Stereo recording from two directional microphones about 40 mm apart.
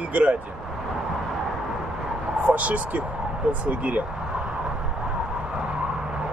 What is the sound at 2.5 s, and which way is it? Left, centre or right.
Speech, right.